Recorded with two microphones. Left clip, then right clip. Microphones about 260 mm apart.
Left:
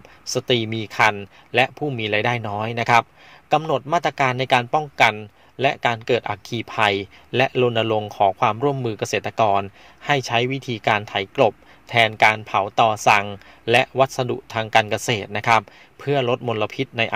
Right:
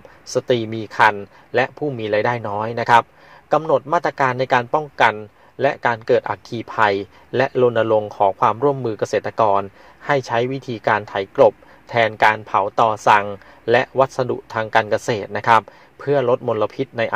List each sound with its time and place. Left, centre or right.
0.2 s speech: left